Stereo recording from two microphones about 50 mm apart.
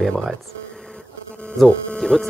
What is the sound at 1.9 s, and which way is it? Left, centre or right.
Speech, centre.